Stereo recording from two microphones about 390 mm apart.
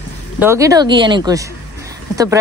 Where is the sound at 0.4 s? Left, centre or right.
Centre.